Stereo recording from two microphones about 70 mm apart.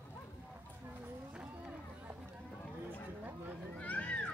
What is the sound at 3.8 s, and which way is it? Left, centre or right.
Cat, left.